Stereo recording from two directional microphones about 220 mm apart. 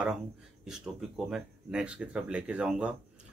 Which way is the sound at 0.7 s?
5° right (ahead or behind).